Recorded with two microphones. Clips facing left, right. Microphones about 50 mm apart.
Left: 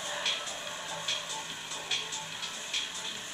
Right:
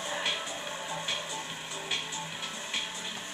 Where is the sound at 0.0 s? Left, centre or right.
Centre.